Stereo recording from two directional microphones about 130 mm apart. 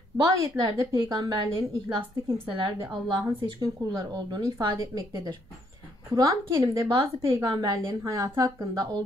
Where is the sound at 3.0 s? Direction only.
35° right (ahead or behind).